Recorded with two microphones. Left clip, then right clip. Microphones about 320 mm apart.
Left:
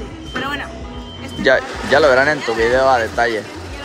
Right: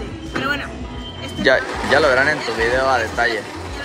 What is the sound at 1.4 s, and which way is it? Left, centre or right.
Speech, centre.